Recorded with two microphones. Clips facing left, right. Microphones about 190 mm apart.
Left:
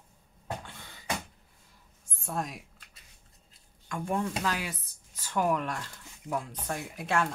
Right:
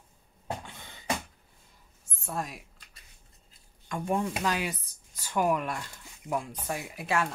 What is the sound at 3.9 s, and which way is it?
Speech, 15° right (ahead or behind).